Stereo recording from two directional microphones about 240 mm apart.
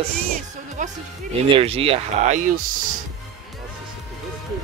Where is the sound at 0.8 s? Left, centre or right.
Right.